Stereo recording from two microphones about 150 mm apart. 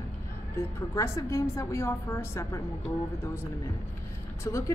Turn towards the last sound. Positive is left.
turn(degrees=20)  # may be behind; listen again after turning